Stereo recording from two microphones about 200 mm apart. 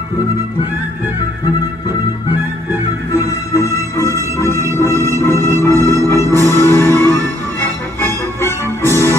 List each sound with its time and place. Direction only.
2.3 s music: 10° right (ahead or behind)
3.3 s music: 15° left (ahead or behind)
5.8 s music: 15° right (ahead or behind)
6.4 s music: 10° left (ahead or behind)
8.4 s music: 15° left (ahead or behind)